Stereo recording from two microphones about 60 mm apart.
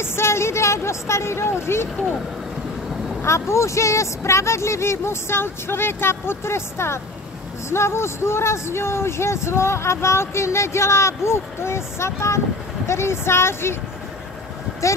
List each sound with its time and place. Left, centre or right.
0.0 s speech: left
3.2 s speech: left